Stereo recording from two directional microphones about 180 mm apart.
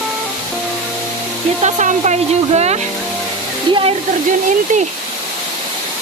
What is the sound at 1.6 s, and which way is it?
Speech, 40° right (ahead or behind).